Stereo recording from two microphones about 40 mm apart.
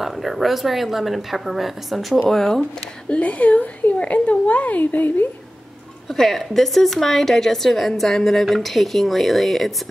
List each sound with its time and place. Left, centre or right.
0.0 s speech: centre
2.2 s a woman's voice: centre
3.1 s a woman's voice: left
6.1 s a woman's voice: centre